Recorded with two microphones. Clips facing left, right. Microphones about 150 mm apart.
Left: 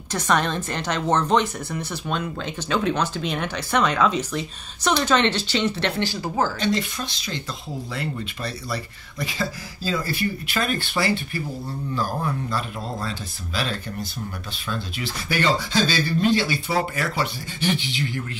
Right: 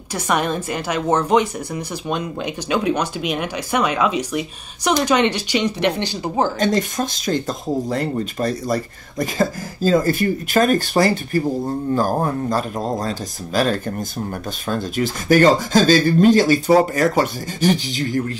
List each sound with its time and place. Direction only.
0.1 s a woman's voice: 10° right (ahead or behind)
6.6 s speech: 45° right (ahead or behind)